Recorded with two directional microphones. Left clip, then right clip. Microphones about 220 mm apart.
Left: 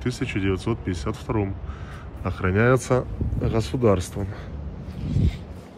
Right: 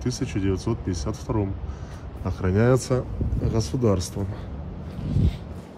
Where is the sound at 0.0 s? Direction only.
10° right (ahead or behind).